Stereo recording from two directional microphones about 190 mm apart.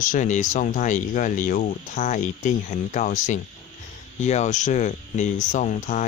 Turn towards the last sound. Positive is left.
turn(degrees=40)  # may be behind; listen again after turning